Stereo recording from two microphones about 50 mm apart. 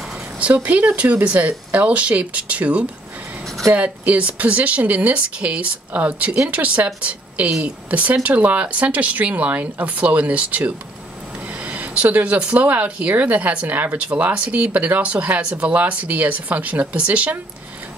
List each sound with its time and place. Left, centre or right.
0.4 s speech: right